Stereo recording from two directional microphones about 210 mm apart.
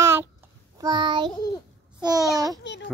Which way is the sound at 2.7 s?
55° left (ahead or behind).